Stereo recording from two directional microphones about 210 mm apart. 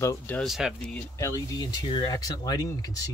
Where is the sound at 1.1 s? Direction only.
15° left (ahead or behind).